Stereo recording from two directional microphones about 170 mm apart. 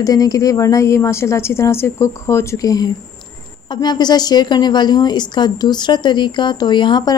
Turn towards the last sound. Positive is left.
turn(degrees=25)  # may be behind; listen again after turning